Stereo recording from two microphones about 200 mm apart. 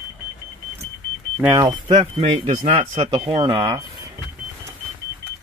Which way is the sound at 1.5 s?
20° right (ahead or behind).